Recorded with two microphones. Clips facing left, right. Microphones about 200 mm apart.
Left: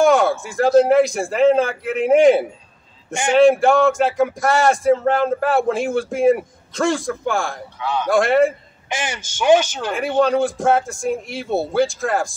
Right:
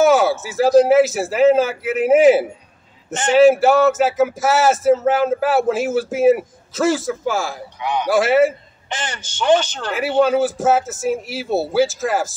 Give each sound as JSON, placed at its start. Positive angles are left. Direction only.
{"t": 0.0, "sound": "speech", "side_deg": -5}
{"t": 3.1, "sound": "a man's voice", "side_deg": 10}
{"t": 3.3, "sound": "speech", "side_deg": -5}
{"t": 7.8, "sound": "a man's voice", "side_deg": -15}
{"t": 8.1, "sound": "speech", "side_deg": -5}
{"t": 8.8, "sound": "speech", "side_deg": 10}
{"t": 9.9, "sound": "speech", "side_deg": -5}